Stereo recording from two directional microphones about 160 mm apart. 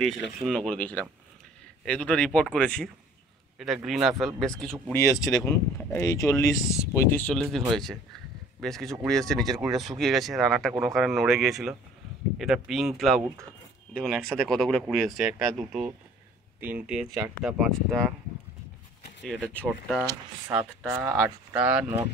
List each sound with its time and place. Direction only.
0.0 s speech: 5° left (ahead or behind)
4.9 s speech: 20° left (ahead or behind); by 15.9 s centre (ahead or behind)
16.5 s speech: 10° right (ahead or behind)
19.2 s speech: 5° left (ahead or behind)
21.0 s speech: 5° right (ahead or behind)